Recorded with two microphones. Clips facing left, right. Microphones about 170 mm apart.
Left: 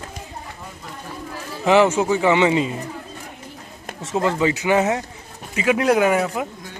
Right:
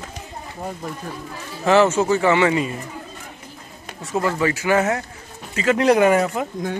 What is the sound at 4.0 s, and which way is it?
A man's voice, 20° left (ahead or behind).